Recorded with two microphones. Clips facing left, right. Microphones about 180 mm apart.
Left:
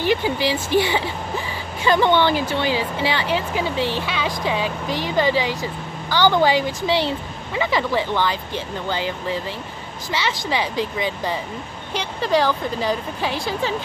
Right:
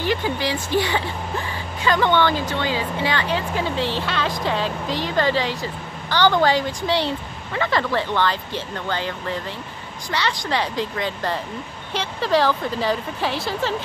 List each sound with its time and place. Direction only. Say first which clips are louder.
0.1 s speech: left 3 dB; 25° left (ahead or behind)
1.9 s speech: left 2 dB; 10° left (ahead or behind)
10.1 s speech: even; 5° left (ahead or behind)